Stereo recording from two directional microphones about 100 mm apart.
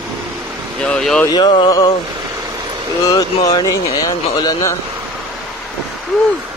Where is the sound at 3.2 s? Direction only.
40° left (ahead or behind).